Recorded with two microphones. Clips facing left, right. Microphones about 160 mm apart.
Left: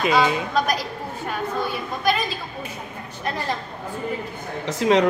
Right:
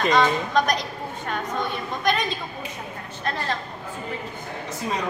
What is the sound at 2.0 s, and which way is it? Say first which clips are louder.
Speech: left 1 dB; 5° left (ahead or behind).